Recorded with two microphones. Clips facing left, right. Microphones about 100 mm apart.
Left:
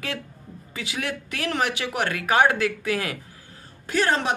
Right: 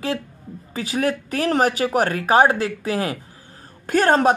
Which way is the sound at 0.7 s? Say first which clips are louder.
Right 8 dB; 40° right (ahead or behind).